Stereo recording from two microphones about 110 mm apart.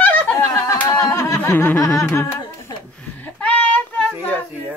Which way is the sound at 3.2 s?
15° left (ahead or behind).